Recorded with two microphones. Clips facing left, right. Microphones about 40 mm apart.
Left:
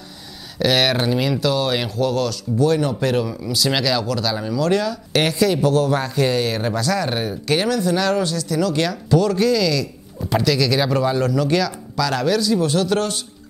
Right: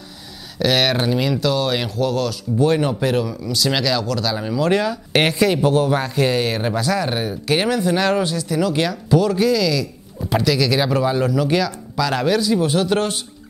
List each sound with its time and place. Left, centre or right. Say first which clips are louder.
0.6 s speech: even; centre
2.6 s speech: right 1 dB; right
3.0 s speech: even; centre
4.4 s speech: right 2 dB; centre
7.5 s speech: right 1 dB; right